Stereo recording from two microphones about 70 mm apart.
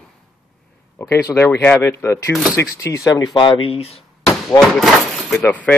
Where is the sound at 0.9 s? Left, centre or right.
Left.